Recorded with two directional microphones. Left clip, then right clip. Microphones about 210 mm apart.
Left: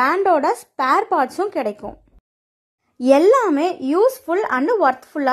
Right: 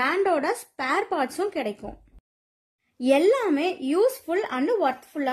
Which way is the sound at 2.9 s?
20° left (ahead or behind).